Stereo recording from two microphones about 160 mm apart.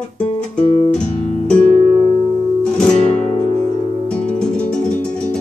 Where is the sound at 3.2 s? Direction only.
40° left (ahead or behind).